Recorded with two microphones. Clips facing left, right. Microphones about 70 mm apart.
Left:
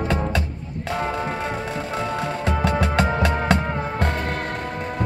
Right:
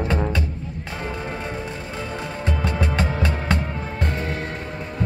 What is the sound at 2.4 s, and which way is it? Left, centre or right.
Music, left.